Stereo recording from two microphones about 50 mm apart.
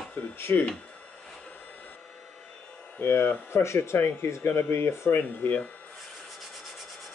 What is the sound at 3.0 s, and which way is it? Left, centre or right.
Speech, left.